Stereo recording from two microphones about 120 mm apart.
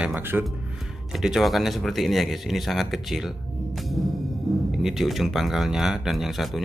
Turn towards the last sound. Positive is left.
turn(degrees=0)  # may be behind; listen again after turning